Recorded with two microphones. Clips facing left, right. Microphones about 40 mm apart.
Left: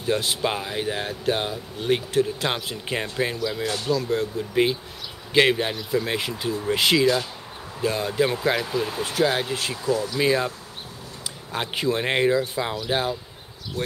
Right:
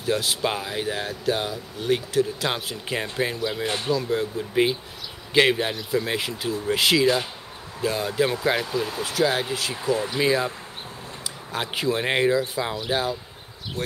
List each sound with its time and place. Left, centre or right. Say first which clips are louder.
0.0 s speech: even; centre
1.0 s speech: left 1 dB; centre
2.9 s speech: even; centre
3.6 s speech: even; right
3.9 s speech: left 1 dB; centre
11.5 s speech: even; centre
13.8 s speech: left 1 dB; right